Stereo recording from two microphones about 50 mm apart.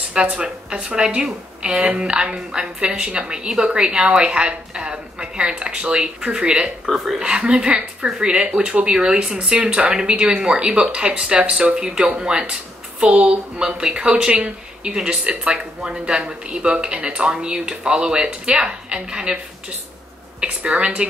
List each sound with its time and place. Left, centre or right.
0.1 s a woman's voice: centre